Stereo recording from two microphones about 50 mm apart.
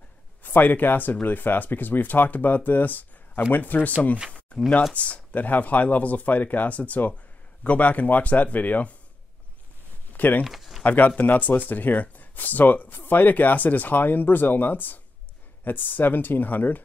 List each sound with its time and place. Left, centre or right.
0.4 s speech: left
4.5 s speech: left
10.1 s speech: left
10.4 s a sound: centre
10.8 s speech: left